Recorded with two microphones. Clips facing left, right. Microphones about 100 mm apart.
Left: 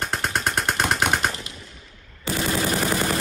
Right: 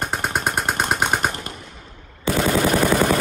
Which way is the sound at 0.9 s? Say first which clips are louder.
Right 2 dB; 5° right (ahead or behind).